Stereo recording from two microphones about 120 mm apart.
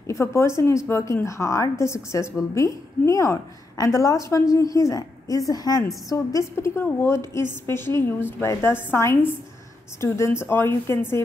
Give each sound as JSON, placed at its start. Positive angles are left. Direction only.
{"t": 0.0, "sound": "a woman's voice", "side_deg": 25}